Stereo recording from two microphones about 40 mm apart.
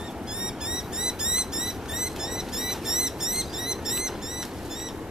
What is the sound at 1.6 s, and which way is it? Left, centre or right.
Printer, centre.